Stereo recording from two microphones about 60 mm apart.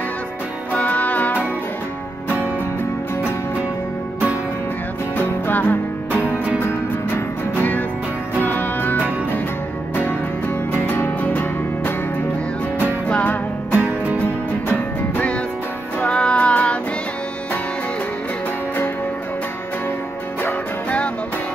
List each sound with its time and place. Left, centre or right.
0.7 s music: left
5.1 s music: left
8.4 s music: left
10.7 s music: left
13.1 s music: left
13.7 s music: right
14.2 s music: left
16.0 s music: centre